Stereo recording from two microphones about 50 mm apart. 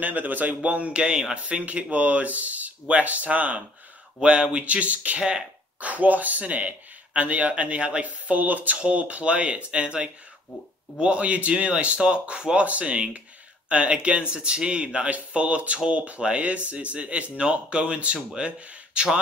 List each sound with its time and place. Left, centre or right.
0.0 s speech: right